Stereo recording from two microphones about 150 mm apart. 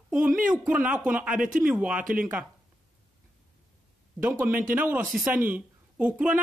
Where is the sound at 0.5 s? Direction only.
10° right (ahead or behind).